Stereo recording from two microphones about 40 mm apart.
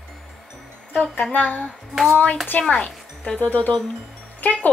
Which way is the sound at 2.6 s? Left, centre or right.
Left.